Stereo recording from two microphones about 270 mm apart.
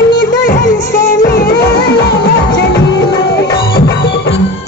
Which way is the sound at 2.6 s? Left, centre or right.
Left.